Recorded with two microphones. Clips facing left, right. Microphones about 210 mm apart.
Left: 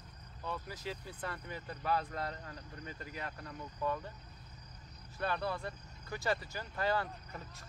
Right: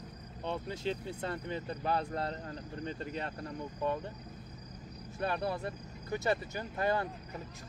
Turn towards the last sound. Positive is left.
turn(degrees=-20)  # may be behind; listen again after turning